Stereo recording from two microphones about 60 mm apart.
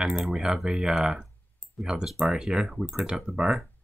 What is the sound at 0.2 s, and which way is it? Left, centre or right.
Speech, centre.